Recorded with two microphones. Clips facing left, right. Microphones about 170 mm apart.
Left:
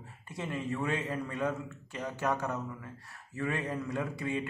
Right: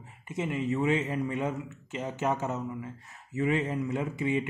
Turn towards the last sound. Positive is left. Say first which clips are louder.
# right 4 dB
turn(degrees=-20)  # may be behind; listen again after turning